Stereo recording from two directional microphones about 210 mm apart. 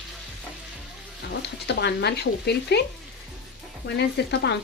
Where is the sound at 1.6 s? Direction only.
50° left (ahead or behind).